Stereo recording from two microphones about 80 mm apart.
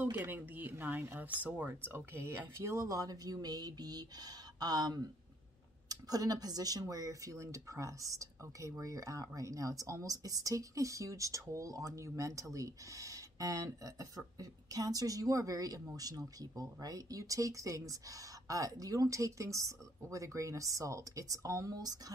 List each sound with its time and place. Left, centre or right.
0.0 s speech: right
1.9 s speech: right